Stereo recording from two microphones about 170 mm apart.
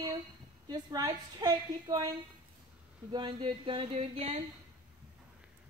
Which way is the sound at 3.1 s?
30° right (ahead or behind).